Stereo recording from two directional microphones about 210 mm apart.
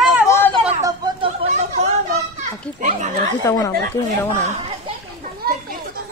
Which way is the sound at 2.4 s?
35° right (ahead or behind).